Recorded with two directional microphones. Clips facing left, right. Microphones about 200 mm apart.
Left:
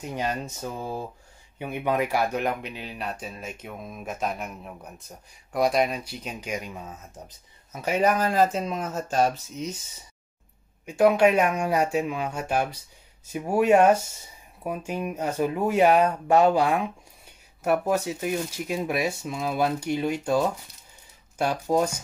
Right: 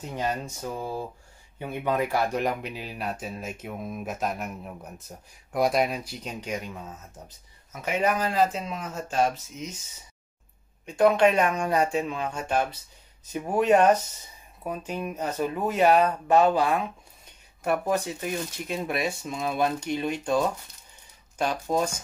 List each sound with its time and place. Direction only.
1.6 s speech: 15° left (ahead or behind)
7.7 s speech: 35° left (ahead or behind)
10.9 s speech: 10° left (ahead or behind)